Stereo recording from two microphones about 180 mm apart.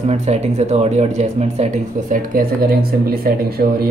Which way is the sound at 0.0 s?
40° right (ahead or behind).